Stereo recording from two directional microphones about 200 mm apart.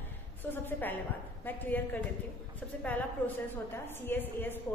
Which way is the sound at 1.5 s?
10° left (ahead or behind).